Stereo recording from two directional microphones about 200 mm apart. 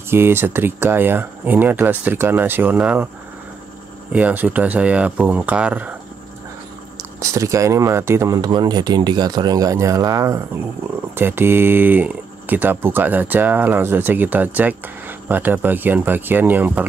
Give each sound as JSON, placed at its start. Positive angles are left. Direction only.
{"t": 0.1, "sound": "speech", "side_deg": -10}
{"t": 4.1, "sound": "speech", "side_deg": -10}
{"t": 7.2, "sound": "speech", "side_deg": -15}